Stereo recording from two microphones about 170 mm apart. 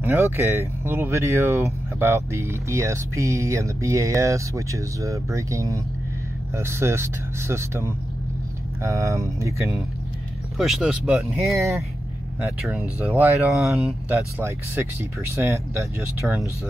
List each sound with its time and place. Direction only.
0.0 s speech: 15° right (ahead or behind)
10.6 s speech: 5° right (ahead or behind)
13.0 s speech: 10° right (ahead or behind)
14.1 s speech: 15° right (ahead or behind)